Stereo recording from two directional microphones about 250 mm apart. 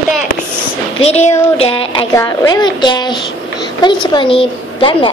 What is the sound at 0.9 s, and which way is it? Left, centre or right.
Speech, left.